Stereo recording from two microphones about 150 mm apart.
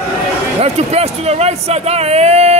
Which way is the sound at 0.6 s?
45° right (ahead or behind).